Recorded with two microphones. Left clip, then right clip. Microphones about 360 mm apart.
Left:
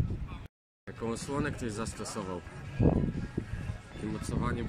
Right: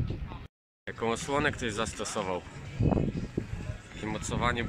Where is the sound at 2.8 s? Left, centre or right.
Left.